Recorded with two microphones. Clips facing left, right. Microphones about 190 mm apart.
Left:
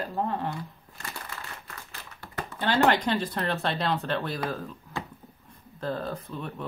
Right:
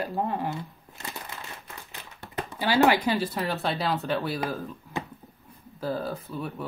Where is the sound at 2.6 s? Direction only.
5° right (ahead or behind).